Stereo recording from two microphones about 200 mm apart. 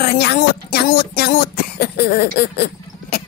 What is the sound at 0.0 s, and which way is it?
Speech, 50° left (ahead or behind).